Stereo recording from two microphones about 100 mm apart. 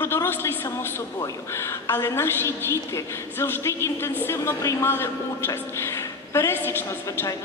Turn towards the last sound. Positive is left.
turn(degrees=30)  # may be behind; listen again after turning